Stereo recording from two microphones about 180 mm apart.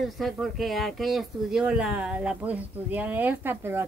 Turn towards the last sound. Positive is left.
turn(degrees=-10)  # may be behind; listen again after turning